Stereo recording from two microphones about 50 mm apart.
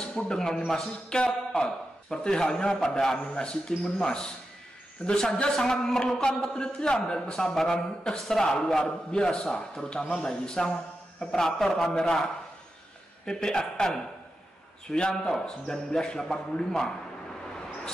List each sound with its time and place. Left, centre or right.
0.0 s a man's voice: centre